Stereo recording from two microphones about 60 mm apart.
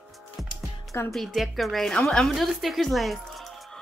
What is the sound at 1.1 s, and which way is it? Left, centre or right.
Speech, centre.